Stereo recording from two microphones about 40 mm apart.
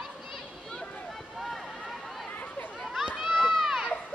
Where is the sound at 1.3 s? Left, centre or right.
Centre.